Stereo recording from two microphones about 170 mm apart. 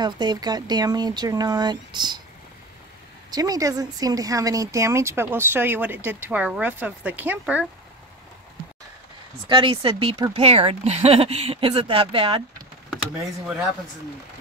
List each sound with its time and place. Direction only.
0.0 s speech: 25° right (ahead or behind)
3.3 s speech: 20° right (ahead or behind)
9.5 s speech: 30° right (ahead or behind)